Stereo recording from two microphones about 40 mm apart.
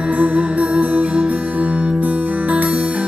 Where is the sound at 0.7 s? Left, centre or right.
Right.